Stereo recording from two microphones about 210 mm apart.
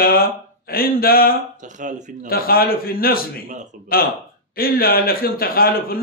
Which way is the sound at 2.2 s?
45° left (ahead or behind).